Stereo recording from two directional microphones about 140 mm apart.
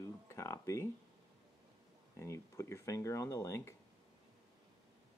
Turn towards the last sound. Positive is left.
turn(degrees=20)  # may be behind; listen again after turning